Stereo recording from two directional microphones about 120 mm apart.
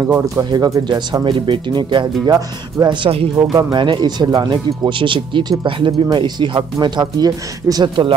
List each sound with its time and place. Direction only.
0.4 s speech: 30° right (ahead or behind)